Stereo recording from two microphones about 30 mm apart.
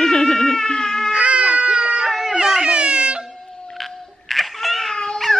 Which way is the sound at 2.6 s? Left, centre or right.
Right.